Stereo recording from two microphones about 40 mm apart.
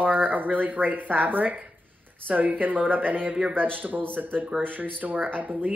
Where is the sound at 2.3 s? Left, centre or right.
Centre.